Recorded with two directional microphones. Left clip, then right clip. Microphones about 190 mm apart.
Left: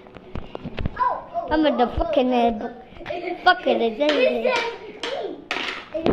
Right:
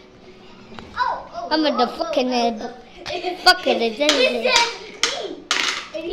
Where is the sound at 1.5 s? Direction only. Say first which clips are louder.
Right 1 dB; 5° right (ahead or behind).